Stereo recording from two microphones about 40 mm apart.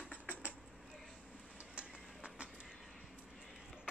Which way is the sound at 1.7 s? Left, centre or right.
Right.